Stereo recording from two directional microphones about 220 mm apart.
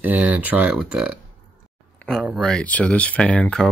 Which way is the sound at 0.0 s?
5° right (ahead or behind).